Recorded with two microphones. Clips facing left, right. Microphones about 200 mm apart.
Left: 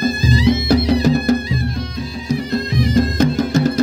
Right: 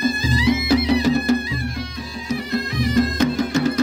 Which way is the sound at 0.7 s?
40° left (ahead or behind).